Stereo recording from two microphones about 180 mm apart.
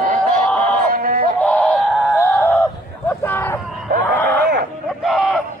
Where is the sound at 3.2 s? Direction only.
10° left (ahead or behind).